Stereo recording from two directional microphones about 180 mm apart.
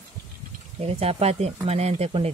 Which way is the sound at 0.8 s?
35° right (ahead or behind).